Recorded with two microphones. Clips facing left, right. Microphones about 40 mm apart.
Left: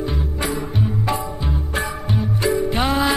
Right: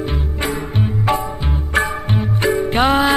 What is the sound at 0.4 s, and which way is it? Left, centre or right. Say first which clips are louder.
Music: right 2 dB; right.